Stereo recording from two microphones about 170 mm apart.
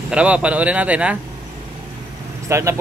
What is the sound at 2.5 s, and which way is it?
Speech, 15° right (ahead or behind).